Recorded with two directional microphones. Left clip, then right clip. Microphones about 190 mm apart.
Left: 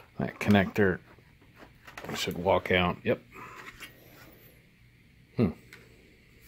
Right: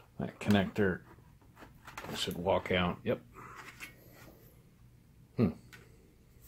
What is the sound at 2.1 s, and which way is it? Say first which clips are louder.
Speech: left 5 dB; 35° left (ahead or behind).